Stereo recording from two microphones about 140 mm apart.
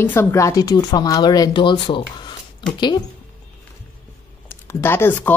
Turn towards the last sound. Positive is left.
turn(degrees=15)  # may be behind; listen again after turning